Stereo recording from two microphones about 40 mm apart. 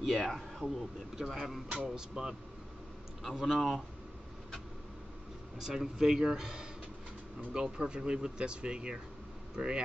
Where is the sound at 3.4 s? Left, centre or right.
Centre.